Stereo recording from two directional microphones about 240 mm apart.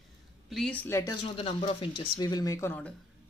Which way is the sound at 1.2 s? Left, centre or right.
Left.